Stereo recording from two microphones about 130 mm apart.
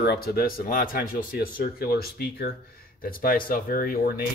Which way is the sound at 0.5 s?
90° left.